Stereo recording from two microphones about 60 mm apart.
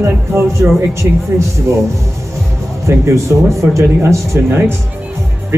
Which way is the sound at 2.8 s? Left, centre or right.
Right.